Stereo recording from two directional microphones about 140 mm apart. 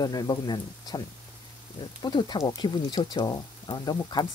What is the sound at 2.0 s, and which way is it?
Speech, 30° left (ahead or behind).